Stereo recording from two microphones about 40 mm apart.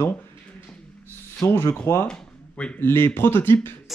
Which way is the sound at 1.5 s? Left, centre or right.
Left.